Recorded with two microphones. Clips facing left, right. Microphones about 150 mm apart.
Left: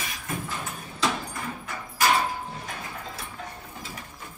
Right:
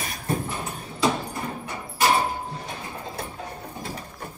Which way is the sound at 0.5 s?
25° right (ahead or behind).